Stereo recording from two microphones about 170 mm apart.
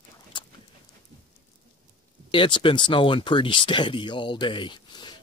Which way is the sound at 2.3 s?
30° left (ahead or behind).